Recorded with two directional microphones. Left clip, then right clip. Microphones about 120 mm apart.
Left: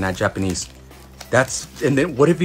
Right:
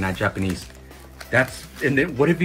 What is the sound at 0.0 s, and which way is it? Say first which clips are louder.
Speech: left 3 dB; 20° left (ahead or behind).